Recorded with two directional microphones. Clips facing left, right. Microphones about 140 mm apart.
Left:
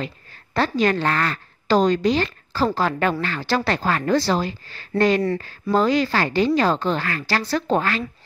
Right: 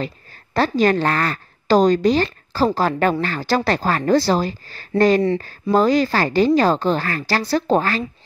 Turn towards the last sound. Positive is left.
turn(degrees=-35)  # may be behind; listen again after turning